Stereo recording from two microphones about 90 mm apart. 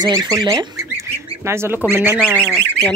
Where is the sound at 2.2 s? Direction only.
10° left (ahead or behind).